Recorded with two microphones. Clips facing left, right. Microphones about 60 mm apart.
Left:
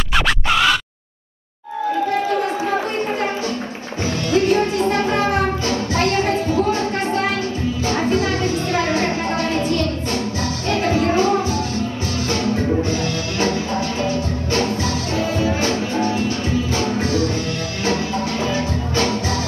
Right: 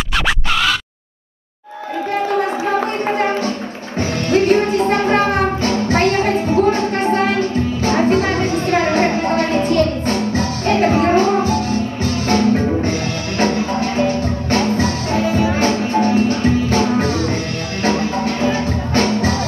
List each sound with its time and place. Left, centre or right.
0.5 s scratch: centre
4.3 s music: right